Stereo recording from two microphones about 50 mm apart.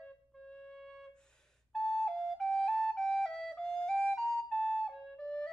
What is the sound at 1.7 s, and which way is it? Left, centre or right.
Flute, centre.